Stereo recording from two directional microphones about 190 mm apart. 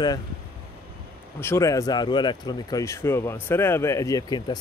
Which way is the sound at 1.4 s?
15° left (ahead or behind).